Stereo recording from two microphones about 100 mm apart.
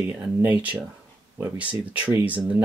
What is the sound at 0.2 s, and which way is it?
Speech, 15° right (ahead or behind).